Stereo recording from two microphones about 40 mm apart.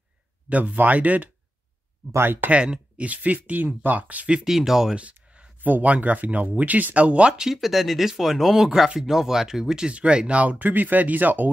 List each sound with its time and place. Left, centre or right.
0.5 s speech: right
2.1 s speech: right
2.5 s speech: right
3.0 s speech: right
4.5 s speech: centre
5.6 s speech: right
7.3 s speech: centre
9.8 s speech: right